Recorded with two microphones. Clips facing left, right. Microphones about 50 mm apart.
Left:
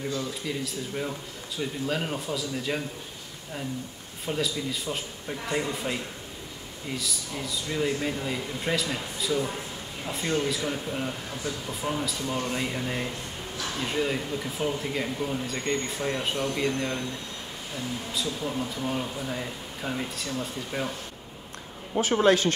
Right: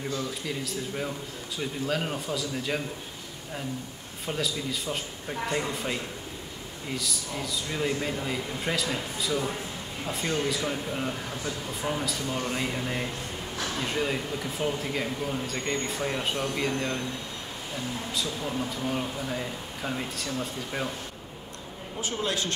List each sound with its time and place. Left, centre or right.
1.6 s speech: centre
4.3 s speech: centre
7.0 s speech: centre
18.4 s speech: centre
21.9 s speech: left